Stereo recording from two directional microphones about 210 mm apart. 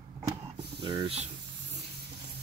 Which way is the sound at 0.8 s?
20° right (ahead or behind).